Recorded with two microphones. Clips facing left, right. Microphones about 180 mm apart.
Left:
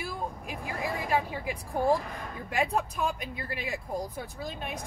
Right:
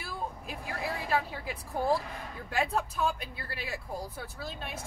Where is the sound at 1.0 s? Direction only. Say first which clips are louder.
Left 3 dB; 15° left (ahead or behind).